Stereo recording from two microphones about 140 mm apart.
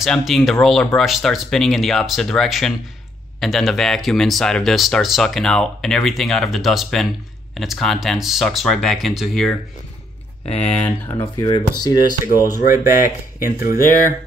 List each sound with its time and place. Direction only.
0.0 s speech: centre (ahead or behind)
10.4 s speech: 45° left (ahead or behind)
11.3 s speech: 30° left (ahead or behind)
12.6 s speech: 15° right (ahead or behind)
13.7 s speech: 70° left (ahead or behind)